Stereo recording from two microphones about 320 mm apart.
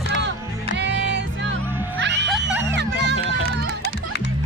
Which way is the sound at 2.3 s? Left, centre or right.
Centre.